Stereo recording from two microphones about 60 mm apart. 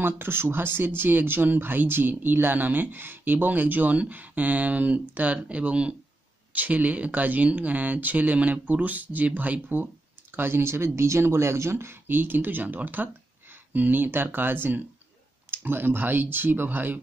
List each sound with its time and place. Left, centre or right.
0.0 s speech: right